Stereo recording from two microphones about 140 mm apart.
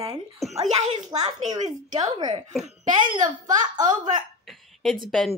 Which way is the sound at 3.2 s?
65° right (ahead or behind).